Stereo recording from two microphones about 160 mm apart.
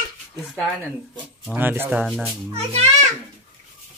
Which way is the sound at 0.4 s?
5° left (ahead or behind).